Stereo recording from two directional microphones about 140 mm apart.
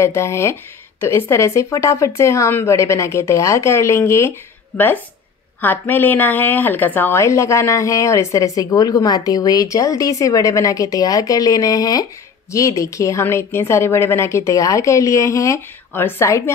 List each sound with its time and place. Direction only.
0.0 s a woman's voice: 20° left (ahead or behind)